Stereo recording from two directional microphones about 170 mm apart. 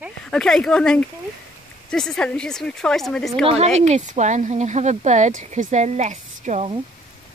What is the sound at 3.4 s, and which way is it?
Speech, 40° right (ahead or behind).